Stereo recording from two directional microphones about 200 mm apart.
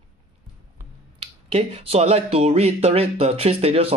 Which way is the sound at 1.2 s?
30° right (ahead or behind).